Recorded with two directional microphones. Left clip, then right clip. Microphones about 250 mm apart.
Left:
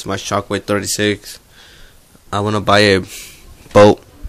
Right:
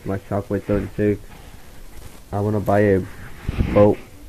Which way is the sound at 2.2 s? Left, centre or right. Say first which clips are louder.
Left 6 dB; left.